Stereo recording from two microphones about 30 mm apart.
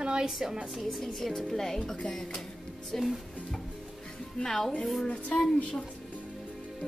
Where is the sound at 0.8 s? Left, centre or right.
Centre.